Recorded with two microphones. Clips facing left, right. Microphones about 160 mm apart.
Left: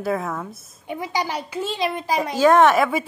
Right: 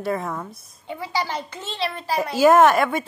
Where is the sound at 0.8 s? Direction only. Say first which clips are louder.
Left 1 dB; 15° left (ahead or behind).